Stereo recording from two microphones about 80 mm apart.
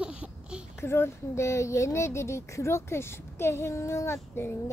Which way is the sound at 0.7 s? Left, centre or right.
Left.